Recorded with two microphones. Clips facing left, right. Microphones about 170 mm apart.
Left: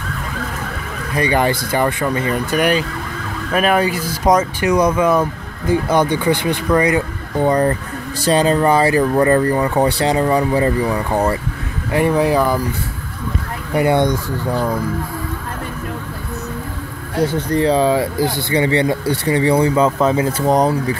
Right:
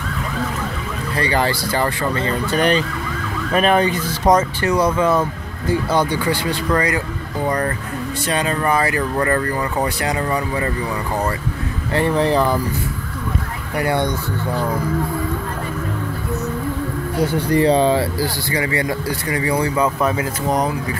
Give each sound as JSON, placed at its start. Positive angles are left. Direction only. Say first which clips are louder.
{"t": 1.1, "sound": "speech", "louder": "left 3 dB", "side_deg": 20}
{"t": 11.9, "sound": "speech", "louder": "left 2 dB", "side_deg": 15}
{"t": 13.7, "sound": "speech", "louder": "left 5 dB", "side_deg": 20}
{"t": 17.5, "sound": "speech", "louder": "right 1 dB", "side_deg": 0}
{"t": 18.1, "sound": "speech", "louder": "left 4 dB", "side_deg": 25}